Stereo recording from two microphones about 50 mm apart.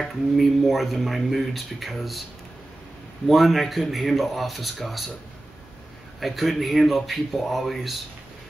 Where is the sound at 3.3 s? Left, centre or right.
Centre.